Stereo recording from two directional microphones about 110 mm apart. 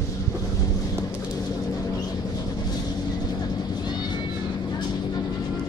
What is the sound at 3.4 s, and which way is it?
Vehicle, 40° left (ahead or behind).